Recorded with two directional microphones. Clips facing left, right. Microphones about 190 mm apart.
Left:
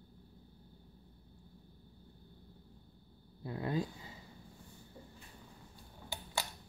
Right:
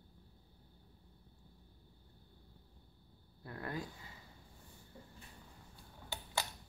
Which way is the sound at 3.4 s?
20° left (ahead or behind).